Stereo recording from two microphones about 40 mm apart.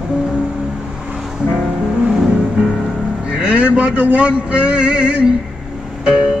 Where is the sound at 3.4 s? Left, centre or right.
Right.